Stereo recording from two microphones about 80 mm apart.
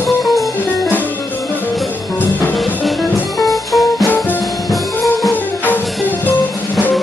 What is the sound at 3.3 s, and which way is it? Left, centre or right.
Music, centre.